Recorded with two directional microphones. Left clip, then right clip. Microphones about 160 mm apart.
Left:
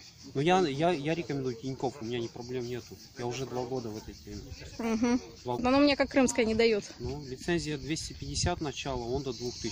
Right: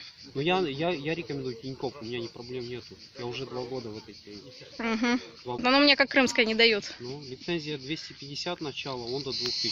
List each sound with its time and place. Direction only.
0.3 s speech: 15° left (ahead or behind)
4.7 s speech: 5° left (ahead or behind)